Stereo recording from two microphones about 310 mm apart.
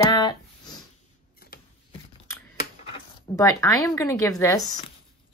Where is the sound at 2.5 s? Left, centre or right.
Centre.